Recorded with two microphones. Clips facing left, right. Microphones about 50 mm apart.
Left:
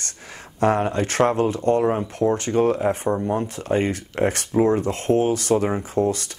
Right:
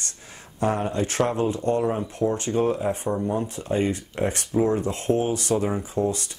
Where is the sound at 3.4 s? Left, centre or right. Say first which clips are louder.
Left 2 dB; left.